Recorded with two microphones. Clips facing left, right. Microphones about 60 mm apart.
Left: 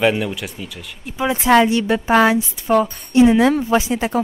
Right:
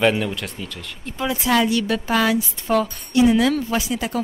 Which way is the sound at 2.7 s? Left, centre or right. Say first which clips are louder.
Left 4 dB; centre.